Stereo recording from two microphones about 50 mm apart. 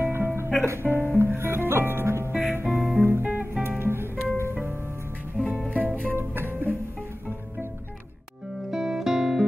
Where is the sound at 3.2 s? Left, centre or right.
Right.